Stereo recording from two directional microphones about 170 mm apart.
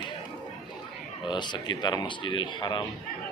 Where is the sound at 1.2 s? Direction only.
25° left (ahead or behind).